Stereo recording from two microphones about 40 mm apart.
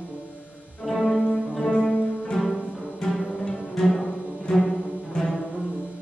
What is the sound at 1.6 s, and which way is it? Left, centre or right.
Music, left.